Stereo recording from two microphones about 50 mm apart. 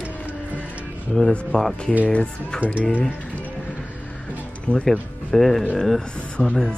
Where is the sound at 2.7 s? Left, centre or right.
Left.